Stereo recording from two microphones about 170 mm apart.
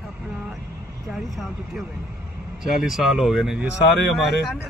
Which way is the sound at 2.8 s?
Centre (ahead or behind).